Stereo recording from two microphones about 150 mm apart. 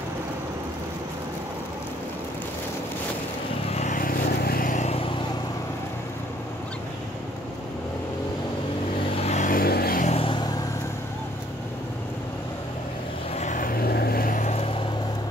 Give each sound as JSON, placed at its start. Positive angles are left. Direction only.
{"t": 3.7, "sound": "vehicle", "side_deg": 55}
{"t": 9.1, "sound": "vehicle", "side_deg": 50}
{"t": 10.0, "sound": "vehicle", "side_deg": 40}
{"t": 13.4, "sound": "vehicle", "side_deg": 60}